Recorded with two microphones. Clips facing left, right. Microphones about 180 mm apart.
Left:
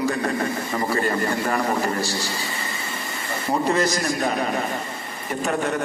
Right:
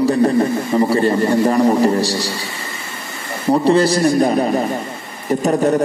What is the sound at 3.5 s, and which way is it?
A man's voice, 35° right (ahead or behind).